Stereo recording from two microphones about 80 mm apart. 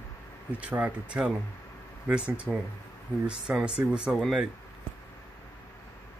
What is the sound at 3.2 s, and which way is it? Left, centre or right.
Speech, centre.